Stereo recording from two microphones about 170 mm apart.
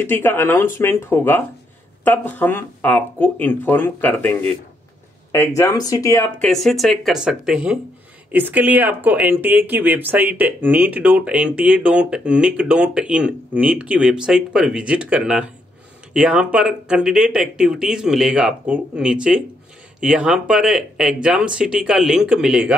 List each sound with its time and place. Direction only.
0.0 s speech: 10° left (ahead or behind)
5.6 s speech: 20° left (ahead or behind)
6.4 s speech: centre (ahead or behind)